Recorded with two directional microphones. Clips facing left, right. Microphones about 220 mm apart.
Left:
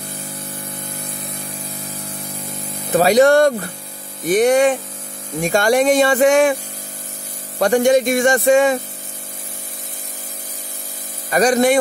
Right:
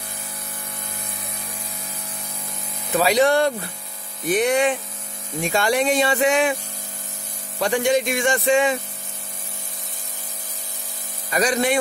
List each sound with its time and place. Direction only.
2.9 s speech: 45° left (ahead or behind)
7.5 s speech: 45° left (ahead or behind)
11.2 s speech: 45° left (ahead or behind)